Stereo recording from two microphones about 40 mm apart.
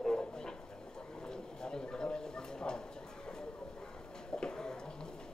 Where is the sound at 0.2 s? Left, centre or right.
Centre.